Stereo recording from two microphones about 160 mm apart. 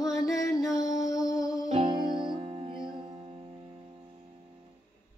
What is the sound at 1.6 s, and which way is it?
Music, 35° right (ahead or behind).